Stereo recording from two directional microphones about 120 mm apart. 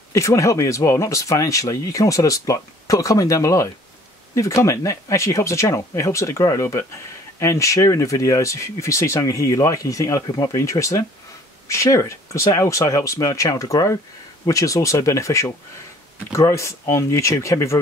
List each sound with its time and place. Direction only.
0.1 s speech: 25° left (ahead or behind)